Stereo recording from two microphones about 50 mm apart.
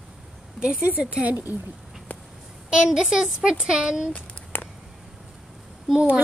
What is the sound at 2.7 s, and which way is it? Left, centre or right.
Speech, centre.